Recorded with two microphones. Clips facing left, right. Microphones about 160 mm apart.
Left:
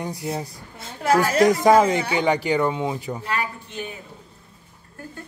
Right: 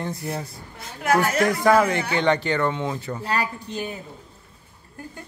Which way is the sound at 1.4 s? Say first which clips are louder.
Left 5 dB; 20° left (ahead or behind).